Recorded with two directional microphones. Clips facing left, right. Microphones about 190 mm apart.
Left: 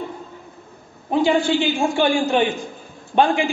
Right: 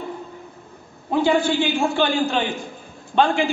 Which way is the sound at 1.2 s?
15° left (ahead or behind).